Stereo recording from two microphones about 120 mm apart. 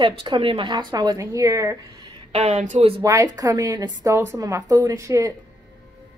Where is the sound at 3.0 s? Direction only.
25° right (ahead or behind).